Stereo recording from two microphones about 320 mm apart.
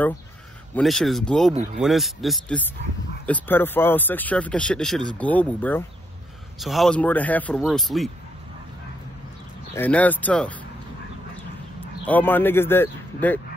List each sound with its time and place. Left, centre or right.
0.7 s speech: centre
9.8 s speech: centre
12.1 s speech: centre